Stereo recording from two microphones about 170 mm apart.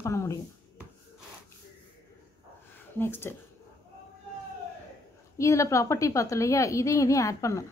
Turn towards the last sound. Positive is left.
turn(degrees=20)  # may be behind; listen again after turning